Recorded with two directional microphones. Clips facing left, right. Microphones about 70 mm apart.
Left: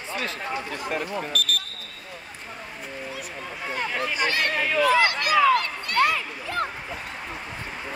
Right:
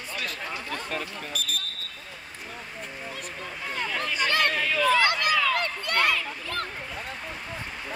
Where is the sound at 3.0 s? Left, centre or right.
Centre; by 4.5 s left.